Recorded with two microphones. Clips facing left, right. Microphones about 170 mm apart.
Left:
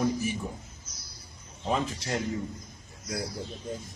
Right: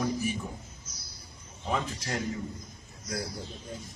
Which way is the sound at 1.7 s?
25° left (ahead or behind).